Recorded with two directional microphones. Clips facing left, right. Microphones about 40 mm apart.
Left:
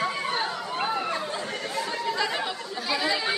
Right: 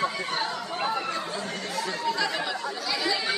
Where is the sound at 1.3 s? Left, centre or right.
Left.